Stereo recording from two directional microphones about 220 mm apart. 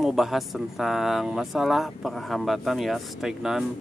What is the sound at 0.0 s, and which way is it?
Speech, centre (ahead or behind).